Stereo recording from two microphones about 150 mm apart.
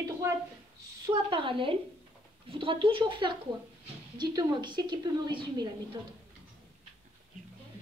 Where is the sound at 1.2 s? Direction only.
35° right (ahead or behind).